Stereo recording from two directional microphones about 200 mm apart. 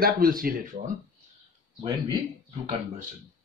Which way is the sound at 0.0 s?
45° right (ahead or behind).